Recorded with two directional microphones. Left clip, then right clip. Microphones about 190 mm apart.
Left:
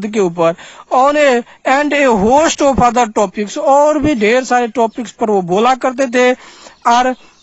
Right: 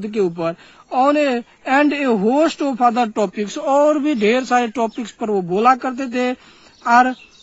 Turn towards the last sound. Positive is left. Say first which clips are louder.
# left 2 dB
turn(degrees=40)  # may be behind; listen again after turning